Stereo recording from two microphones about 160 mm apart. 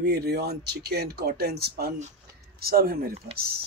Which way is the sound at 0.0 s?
85° right.